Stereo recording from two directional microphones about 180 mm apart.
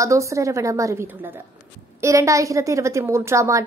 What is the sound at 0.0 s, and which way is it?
A woman's voice, 15° right (ahead or behind).